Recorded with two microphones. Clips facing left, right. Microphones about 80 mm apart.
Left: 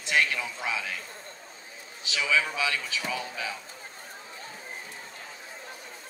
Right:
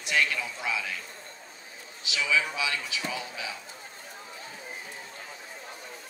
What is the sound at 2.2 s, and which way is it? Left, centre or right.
A man's voice, left.